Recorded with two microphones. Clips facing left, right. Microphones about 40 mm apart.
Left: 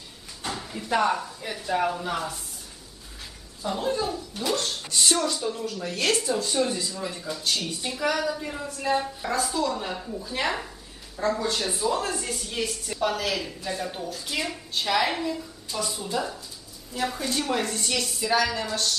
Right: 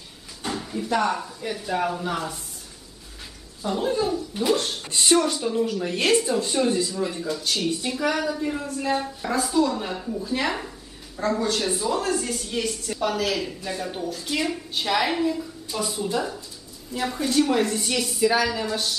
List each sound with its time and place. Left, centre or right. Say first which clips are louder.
0.4 s speech: right 4 dB; centre
3.6 s speech: right 3 dB; centre